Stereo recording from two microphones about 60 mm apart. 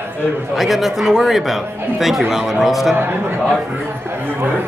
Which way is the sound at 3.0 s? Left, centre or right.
Right.